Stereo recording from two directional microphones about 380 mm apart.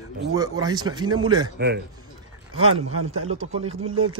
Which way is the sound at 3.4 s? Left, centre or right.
Centre.